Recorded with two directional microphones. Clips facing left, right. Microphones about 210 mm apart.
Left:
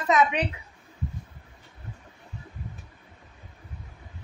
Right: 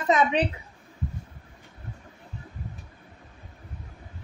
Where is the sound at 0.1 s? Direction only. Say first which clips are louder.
Right 1 dB; 30° right (ahead or behind).